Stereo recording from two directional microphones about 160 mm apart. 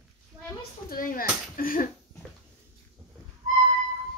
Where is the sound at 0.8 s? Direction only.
60° left (ahead or behind).